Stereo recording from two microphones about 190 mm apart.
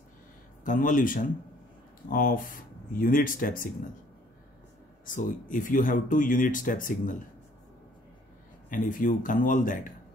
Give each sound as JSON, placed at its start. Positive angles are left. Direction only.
{"t": 0.7, "sound": "speech", "side_deg": 45}
{"t": 5.0, "sound": "speech", "side_deg": 45}
{"t": 8.6, "sound": "speech", "side_deg": 45}